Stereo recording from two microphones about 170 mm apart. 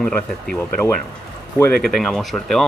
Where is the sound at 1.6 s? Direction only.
5° left (ahead or behind).